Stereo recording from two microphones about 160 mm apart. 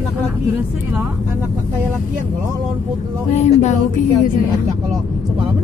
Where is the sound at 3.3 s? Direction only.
45° left (ahead or behind).